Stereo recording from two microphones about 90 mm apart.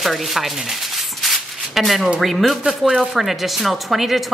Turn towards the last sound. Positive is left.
turn(degrees=0)  # may be behind; listen again after turning